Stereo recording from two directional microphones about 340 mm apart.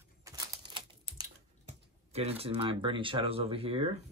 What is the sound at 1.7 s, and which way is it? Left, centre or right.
Speech, centre.